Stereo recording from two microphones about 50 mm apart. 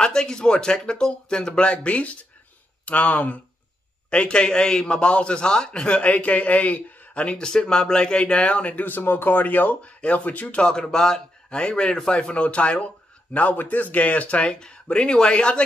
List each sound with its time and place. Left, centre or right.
0.0 s speech: centre; by 3.3 s left
4.1 s a man's voice: centre
8.8 s speech: left
10.7 s a man's voice: centre